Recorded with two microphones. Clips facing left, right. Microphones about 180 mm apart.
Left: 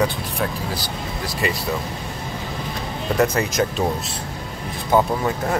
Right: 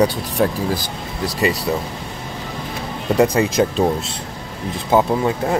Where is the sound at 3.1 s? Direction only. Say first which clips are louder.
Right 4 dB; 15° right (ahead or behind).